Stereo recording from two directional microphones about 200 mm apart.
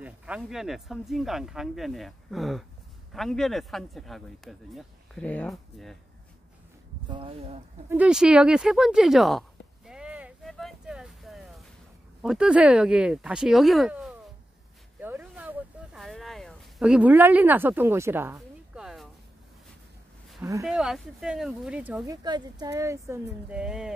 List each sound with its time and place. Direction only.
0.0 s speech: 5° right (ahead or behind)
7.1 s speech: 30° right (ahead or behind)
7.9 s speech: 5° right (ahead or behind)
9.8 s a sound: 5° right (ahead or behind)
12.2 s speech: 5° right (ahead or behind)
15.0 s a sound: 10° right (ahead or behind)
20.6 s speech: centre (ahead or behind)
22.0 s speech: 20° right (ahead or behind); by 23.9 s 5° right (ahead or behind)